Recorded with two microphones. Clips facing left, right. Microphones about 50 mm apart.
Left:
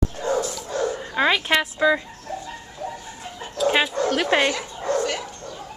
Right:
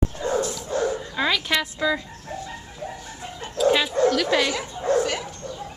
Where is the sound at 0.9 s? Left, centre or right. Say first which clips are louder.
Left 3 dB; left.